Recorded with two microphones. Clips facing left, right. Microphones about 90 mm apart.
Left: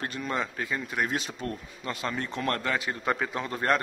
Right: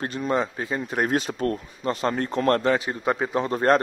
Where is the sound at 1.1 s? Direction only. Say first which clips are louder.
Right 8 dB; 45° right (ahead or behind).